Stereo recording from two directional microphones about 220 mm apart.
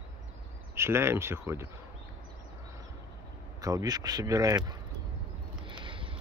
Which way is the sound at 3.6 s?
15° right (ahead or behind).